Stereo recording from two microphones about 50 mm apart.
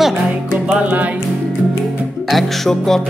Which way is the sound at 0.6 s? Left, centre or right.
Right.